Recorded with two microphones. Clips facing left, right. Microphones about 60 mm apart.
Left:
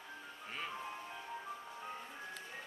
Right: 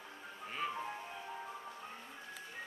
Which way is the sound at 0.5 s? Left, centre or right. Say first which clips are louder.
Right 4 dB; centre.